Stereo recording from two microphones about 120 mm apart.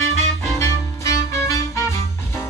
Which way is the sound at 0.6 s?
25° left (ahead or behind).